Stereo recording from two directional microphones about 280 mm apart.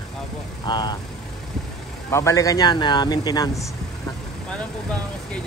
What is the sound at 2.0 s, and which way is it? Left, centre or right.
A man's voice, centre.